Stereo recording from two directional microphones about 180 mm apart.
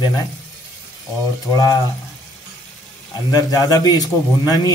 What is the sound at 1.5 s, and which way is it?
Speech, 20° left (ahead or behind).